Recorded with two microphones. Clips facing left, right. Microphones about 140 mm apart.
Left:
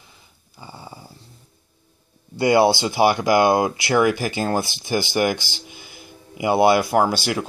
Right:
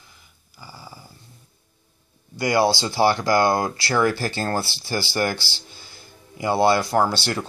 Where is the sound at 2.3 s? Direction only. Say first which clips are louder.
Left 4 dB; 25° left (ahead or behind).